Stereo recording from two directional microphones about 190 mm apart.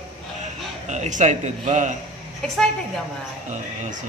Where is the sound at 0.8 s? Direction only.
40° right (ahead or behind).